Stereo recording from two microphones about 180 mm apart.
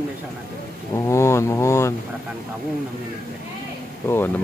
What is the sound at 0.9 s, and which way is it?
Speech, 15° left (ahead or behind).